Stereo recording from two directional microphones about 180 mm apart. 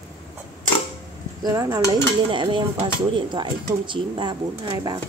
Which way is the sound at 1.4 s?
20° right (ahead or behind).